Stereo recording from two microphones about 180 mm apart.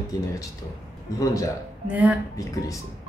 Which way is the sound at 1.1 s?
20° left (ahead or behind).